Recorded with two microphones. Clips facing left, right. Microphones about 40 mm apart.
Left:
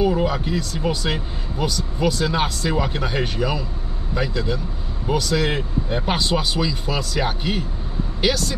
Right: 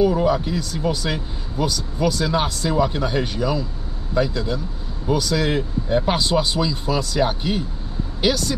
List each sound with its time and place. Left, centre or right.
0.0 s speech: centre